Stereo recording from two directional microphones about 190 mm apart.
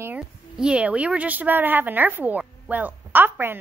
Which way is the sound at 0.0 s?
5° right (ahead or behind).